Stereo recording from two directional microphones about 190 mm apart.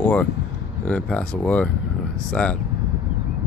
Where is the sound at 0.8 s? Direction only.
5° left (ahead or behind).